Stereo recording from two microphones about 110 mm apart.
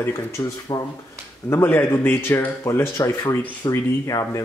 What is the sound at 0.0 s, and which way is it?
Speech, 30° left (ahead or behind).